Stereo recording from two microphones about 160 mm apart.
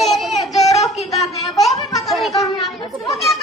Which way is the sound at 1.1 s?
Centre (ahead or behind).